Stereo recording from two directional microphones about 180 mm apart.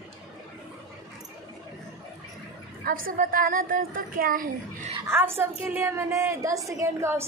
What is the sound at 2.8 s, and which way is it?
A woman's voice, 50° right (ahead or behind).